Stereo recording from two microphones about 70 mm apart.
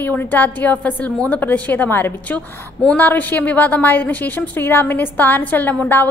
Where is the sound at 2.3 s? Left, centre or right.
Centre.